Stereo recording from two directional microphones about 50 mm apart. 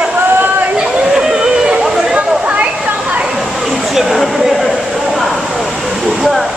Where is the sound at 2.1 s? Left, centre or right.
Centre.